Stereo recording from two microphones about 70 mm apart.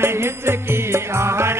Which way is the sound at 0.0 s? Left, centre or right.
Right.